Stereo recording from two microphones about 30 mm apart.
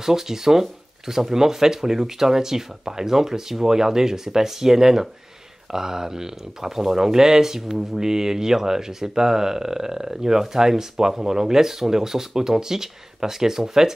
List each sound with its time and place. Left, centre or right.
0.0 s speech: centre